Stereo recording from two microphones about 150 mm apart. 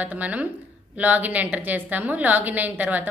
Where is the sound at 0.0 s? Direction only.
10° right (ahead or behind).